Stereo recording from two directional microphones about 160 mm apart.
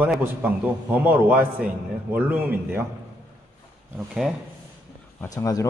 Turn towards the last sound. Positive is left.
turn(degrees=20)  # may be behind; listen again after turning